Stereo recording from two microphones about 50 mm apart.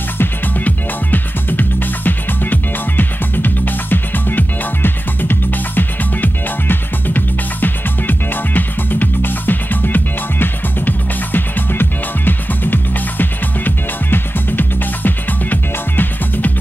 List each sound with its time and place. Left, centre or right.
0.7 s music: left